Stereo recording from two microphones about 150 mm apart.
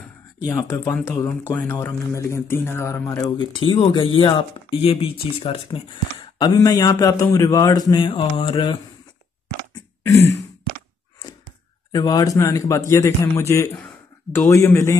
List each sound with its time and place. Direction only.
0.5 s speech: 20° left (ahead or behind)
11.9 s speech: 25° left (ahead or behind)